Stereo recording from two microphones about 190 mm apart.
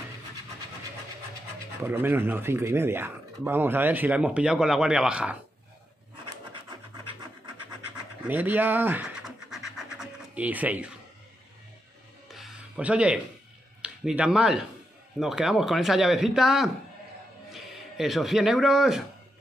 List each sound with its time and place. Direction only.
1.8 s speech: 10° right (ahead or behind)
7.9 s scratch: 10° right (ahead or behind)
12.3 s music: centre (ahead or behind)
13.8 s speech: 5° right (ahead or behind)